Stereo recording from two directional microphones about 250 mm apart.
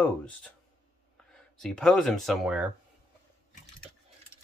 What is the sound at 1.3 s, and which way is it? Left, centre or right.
Speech, centre.